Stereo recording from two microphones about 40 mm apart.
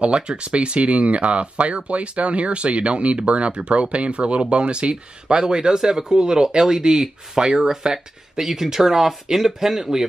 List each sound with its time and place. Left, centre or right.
0.0 s speech: right; by 10.0 s centre